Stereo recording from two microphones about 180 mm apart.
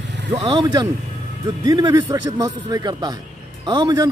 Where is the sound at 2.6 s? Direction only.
25° right (ahead or behind).